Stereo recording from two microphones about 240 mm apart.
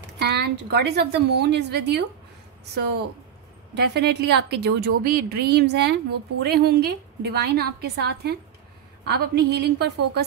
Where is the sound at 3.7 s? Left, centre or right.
Right.